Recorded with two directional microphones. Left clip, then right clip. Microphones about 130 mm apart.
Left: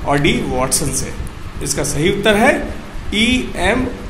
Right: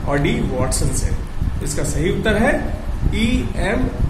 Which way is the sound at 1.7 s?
50° left (ahead or behind).